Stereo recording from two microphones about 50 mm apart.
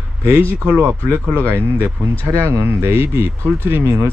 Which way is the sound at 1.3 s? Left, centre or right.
Right.